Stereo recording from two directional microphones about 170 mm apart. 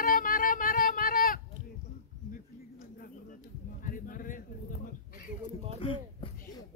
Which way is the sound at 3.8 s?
55° left (ahead or behind).